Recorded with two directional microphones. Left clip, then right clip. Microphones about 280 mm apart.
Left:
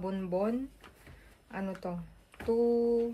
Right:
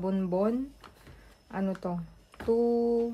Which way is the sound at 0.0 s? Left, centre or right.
Right.